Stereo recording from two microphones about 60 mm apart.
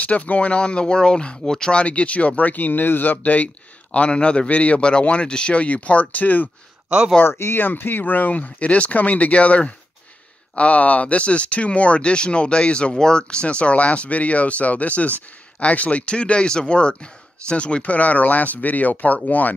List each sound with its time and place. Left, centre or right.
0.0 s speech: left
7.2 s speech: left